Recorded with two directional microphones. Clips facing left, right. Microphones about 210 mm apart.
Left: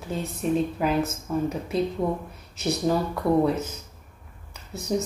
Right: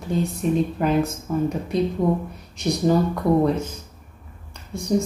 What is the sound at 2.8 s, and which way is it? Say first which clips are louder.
Speech: right 5 dB; 5° left (ahead or behind).